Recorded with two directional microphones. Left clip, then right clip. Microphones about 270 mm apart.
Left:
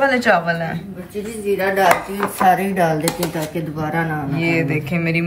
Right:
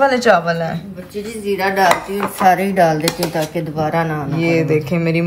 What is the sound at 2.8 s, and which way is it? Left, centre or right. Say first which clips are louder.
Speech: right 4 dB; right.